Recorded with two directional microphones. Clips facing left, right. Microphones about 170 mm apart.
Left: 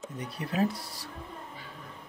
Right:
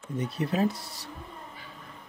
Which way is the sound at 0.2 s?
25° right (ahead or behind).